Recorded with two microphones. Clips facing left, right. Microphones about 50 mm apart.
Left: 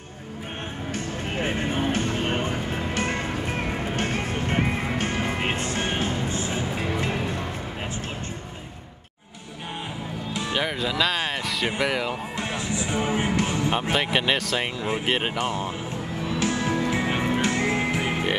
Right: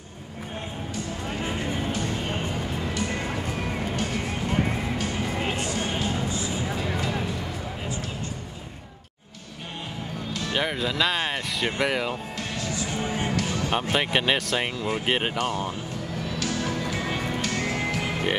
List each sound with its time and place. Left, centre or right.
0.9 s music: left
10.5 s a sound: centre
11.8 s speech: centre
12.4 s music: left
13.9 s speech: centre
15.3 s speech: left
16.2 s music: left